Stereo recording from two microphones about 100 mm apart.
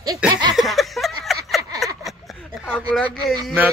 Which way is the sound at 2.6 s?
5° left (ahead or behind).